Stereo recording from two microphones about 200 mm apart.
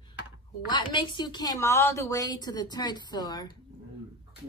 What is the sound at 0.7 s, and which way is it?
A woman's voice, 25° left (ahead or behind).